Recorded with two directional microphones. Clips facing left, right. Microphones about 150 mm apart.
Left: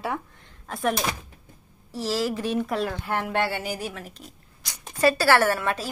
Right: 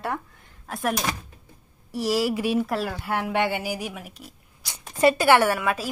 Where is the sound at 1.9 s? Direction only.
10° right (ahead or behind).